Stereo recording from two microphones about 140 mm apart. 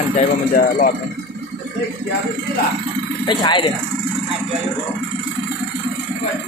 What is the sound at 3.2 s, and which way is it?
Speech, 35° left (ahead or behind).